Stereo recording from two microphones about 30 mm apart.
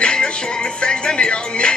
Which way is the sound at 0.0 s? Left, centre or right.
Left.